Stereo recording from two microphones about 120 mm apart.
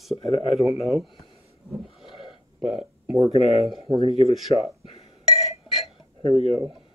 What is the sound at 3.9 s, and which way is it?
Speech, 50° right (ahead or behind).